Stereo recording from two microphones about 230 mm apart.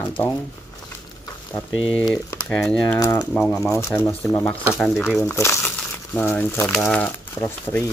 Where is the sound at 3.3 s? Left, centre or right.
Centre.